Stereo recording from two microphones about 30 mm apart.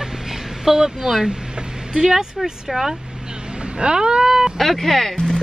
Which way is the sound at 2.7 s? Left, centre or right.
Centre.